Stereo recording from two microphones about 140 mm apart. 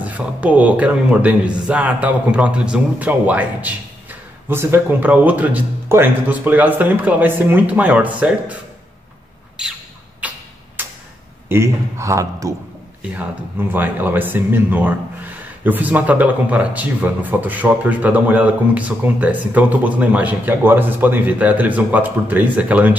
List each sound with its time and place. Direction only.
0.0 s speech: 10° right (ahead or behind)
10.2 s tick-tock: 10° right (ahead or behind)
11.4 s a man's voice: 20° right (ahead or behind)